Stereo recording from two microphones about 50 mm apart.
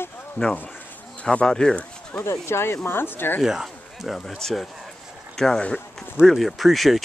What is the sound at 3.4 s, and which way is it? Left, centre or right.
Speech, centre.